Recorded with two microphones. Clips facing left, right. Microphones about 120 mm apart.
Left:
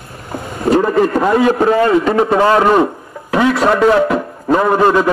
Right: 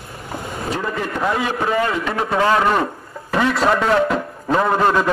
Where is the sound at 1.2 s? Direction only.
55° left (ahead or behind).